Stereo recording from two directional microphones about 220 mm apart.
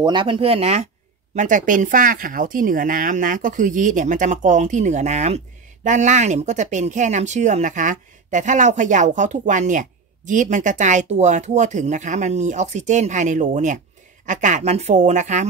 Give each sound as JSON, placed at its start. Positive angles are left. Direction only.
{"t": 0.0, "sound": "speech", "side_deg": -20}